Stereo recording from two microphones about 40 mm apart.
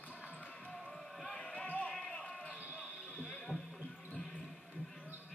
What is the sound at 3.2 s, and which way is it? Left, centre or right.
Music, left.